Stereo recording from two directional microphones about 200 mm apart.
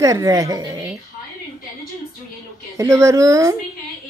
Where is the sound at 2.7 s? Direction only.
15° right (ahead or behind).